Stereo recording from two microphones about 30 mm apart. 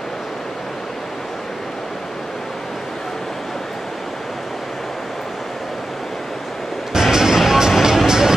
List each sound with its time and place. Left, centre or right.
6.9 s music: centre